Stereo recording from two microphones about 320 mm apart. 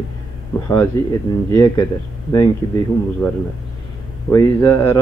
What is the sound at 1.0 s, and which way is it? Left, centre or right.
A man's voice, centre.